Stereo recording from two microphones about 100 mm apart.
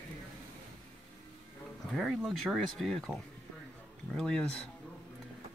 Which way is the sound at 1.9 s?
Centre (ahead or behind).